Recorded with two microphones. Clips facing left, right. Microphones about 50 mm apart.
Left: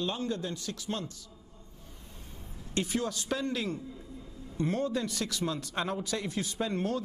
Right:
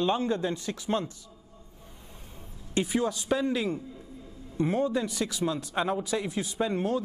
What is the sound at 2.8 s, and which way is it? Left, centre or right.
A man's voice, centre.